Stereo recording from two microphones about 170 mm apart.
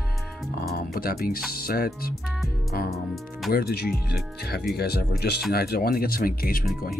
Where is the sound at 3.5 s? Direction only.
65° left (ahead or behind).